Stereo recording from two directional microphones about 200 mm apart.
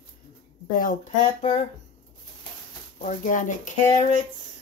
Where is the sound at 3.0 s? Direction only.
40° left (ahead or behind).